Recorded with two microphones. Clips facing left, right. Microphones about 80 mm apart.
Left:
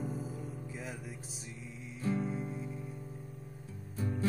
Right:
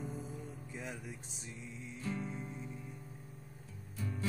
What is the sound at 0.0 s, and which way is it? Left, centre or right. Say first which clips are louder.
Music: left 4 dB; centre.